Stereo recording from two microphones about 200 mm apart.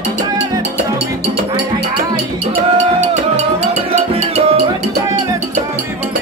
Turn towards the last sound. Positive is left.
turn(degrees=-30)  # may be behind; listen again after turning